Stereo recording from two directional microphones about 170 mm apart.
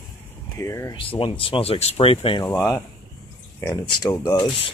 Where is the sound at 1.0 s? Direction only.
30° left (ahead or behind).